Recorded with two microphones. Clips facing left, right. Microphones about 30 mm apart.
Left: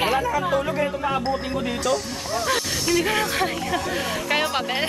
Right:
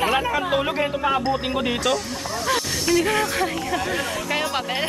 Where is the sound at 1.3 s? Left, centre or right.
Right.